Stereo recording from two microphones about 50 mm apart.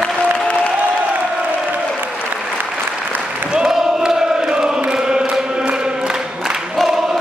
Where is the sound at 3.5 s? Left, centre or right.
Centre.